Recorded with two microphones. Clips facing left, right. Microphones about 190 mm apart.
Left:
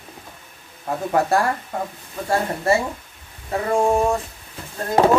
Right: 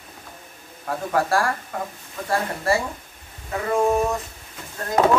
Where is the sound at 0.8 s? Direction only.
20° left (ahead or behind).